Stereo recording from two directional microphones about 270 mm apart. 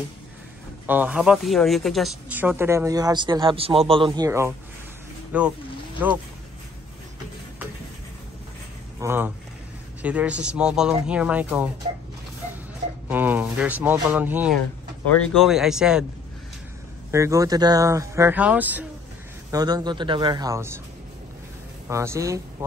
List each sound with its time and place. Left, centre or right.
0.8 s speech: centre
9.0 s speech: centre
13.1 s speech: centre
17.1 s speech: centre
21.8 s speech: centre